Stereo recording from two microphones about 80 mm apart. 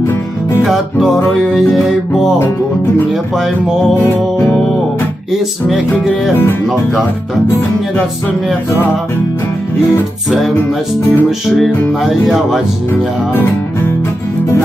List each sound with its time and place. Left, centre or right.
0.0 s music: left
0.7 s music: centre
11.2 s music: centre